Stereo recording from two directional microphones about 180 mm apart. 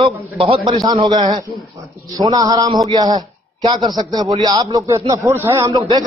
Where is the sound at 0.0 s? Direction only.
30° right (ahead or behind).